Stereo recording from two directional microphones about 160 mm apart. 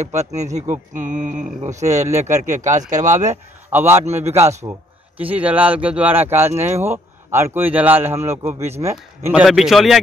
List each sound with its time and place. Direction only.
0.0 s speech: 45° right (ahead or behind)
3.7 s speech: 15° right (ahead or behind)
4.7 s a man's voice: 25° right (ahead or behind)
5.1 s speech: 10° right (ahead or behind)